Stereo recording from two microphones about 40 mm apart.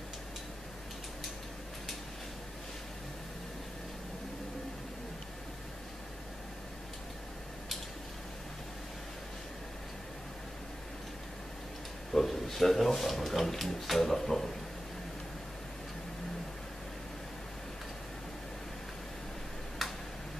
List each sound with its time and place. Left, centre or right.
12.1 s speech: centre